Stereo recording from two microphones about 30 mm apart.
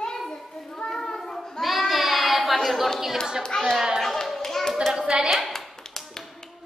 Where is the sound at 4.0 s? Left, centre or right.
Centre.